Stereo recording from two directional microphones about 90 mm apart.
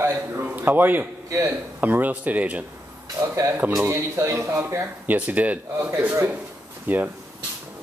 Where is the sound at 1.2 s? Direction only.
35° right (ahead or behind).